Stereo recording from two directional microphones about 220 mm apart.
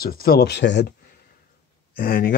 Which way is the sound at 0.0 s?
40° left (ahead or behind).